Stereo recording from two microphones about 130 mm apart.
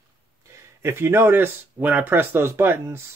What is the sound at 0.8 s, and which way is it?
Speech, 20° right (ahead or behind).